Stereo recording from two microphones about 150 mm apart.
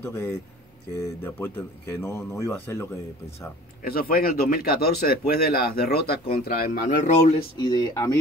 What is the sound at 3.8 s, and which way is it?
Speech, 75° left (ahead or behind).